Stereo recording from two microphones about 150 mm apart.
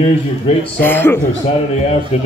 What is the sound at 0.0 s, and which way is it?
Speech, 40° left (ahead or behind).